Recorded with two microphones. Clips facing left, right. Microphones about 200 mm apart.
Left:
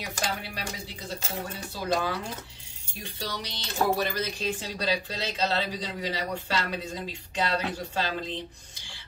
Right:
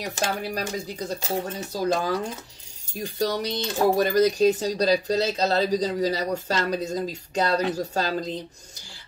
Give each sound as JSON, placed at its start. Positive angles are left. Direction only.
{"t": 0.0, "sound": "speech", "side_deg": -45}